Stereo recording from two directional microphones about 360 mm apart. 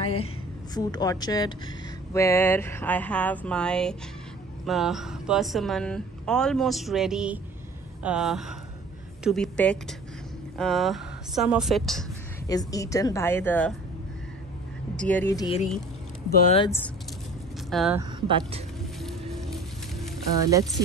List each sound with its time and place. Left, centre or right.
0.0 s a sound: centre
0.7 s a woman's voice: centre
15.0 s a woman's voice: centre
18.2 s speech: centre
19.5 s music: centre
20.4 s speech: centre